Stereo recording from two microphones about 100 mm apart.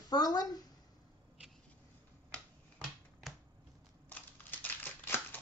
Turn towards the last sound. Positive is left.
turn(degrees=20)  # may be behind; listen again after turning